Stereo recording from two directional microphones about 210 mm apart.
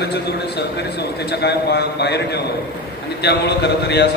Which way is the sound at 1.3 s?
50° left (ahead or behind).